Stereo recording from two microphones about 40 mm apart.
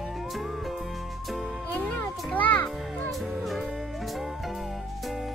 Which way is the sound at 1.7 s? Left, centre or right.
Left.